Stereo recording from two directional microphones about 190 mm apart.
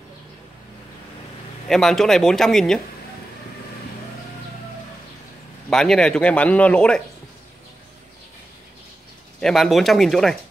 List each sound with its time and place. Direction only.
1.7 s a man's voice: centre (ahead or behind)
5.7 s a man's voice: 5° left (ahead or behind)
9.4 s a man's voice: centre (ahead or behind)